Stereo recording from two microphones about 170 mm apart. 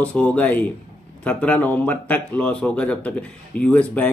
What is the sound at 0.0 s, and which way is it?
Speech, 5° left (ahead or behind).